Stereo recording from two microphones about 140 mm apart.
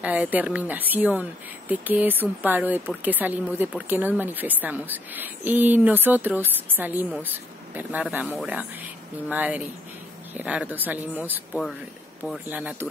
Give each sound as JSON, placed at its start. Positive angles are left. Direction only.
{"t": 0.0, "sound": "speech", "side_deg": -10}
{"t": 12.4, "sound": "speech", "side_deg": -10}